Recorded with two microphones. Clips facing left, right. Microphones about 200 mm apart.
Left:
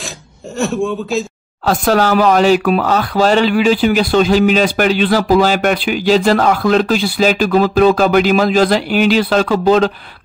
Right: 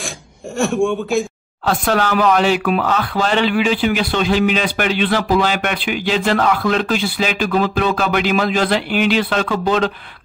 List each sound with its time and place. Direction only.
1.7 s speech: 40° left (ahead or behind)